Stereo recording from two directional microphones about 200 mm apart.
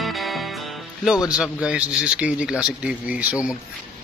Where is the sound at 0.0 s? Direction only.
Centre (ahead or behind).